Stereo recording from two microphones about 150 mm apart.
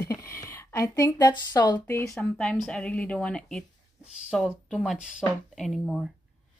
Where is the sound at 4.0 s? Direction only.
5° right (ahead or behind).